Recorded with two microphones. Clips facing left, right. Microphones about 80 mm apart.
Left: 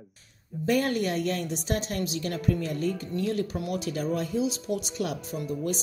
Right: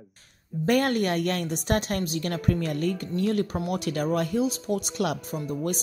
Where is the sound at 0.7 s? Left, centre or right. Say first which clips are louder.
Right 2 dB; right.